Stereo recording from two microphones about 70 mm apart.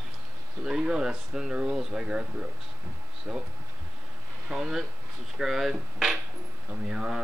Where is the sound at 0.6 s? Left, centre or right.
Centre.